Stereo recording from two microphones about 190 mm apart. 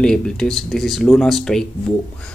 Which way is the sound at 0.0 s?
5° left (ahead or behind).